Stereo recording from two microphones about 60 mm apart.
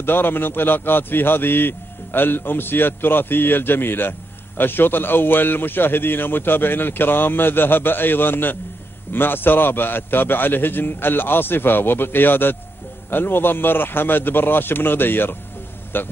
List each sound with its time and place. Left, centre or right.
0.0 s a man's voice: left